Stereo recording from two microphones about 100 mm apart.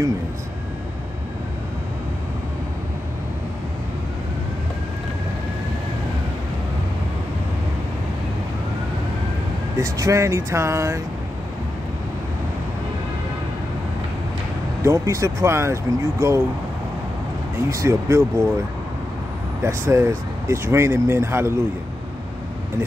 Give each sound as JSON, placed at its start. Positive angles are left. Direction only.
{"t": 9.8, "sound": "speech", "side_deg": -30}
{"t": 14.8, "sound": "speech", "side_deg": -30}
{"t": 17.6, "sound": "speech", "side_deg": -30}
{"t": 19.6, "sound": "speech", "side_deg": -30}